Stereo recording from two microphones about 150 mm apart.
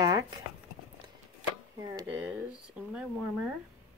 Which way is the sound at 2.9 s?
5° right (ahead or behind).